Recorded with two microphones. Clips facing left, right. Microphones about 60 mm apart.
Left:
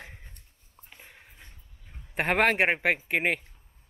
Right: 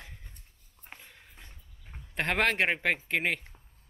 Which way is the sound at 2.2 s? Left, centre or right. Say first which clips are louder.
Left 4 dB; centre.